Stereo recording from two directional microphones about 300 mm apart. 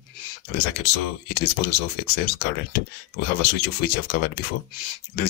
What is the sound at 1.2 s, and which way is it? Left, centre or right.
Speech, left.